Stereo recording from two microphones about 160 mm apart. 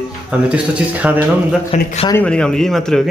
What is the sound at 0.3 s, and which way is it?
A man's voice, 10° right (ahead or behind).